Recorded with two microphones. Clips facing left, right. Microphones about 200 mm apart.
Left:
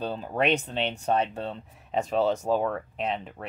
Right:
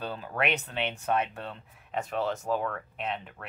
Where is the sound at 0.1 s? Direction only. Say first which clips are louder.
Left 4 dB; 20° left (ahead or behind).